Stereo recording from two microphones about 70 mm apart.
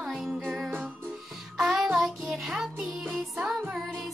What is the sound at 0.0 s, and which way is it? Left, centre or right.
Music, centre.